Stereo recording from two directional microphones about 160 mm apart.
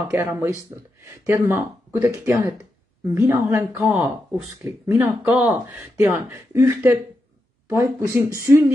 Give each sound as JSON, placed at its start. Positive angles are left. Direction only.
{"t": 0.1, "sound": "speech", "side_deg": -15}